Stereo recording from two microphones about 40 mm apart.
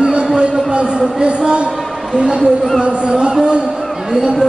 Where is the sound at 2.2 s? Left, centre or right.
Centre.